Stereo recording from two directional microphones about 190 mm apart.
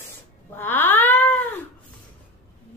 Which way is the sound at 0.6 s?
10° left (ahead or behind).